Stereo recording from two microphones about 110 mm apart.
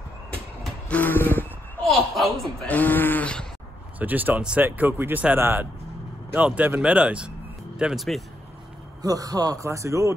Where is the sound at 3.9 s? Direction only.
15° right (ahead or behind); by 8.2 s centre (ahead or behind).